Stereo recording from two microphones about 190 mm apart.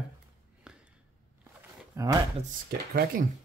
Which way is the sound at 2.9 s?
50° right (ahead or behind).